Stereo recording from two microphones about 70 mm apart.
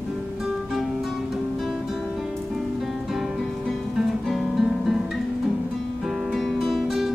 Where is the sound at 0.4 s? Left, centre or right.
Centre.